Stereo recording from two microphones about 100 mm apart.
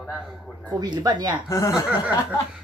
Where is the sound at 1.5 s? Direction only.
30° left (ahead or behind).